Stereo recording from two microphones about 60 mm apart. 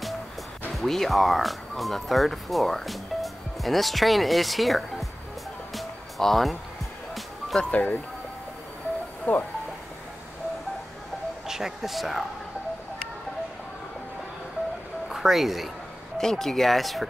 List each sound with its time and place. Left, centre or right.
0.7 s speech: centre
5.8 s music: centre
7.7 s speech: left
9.3 s speech: left
11.4 s speech: centre
15.0 s speech: centre